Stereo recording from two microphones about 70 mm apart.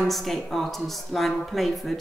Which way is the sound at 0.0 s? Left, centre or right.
Centre.